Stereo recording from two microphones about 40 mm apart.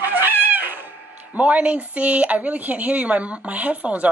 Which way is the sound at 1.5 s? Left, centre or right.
Right.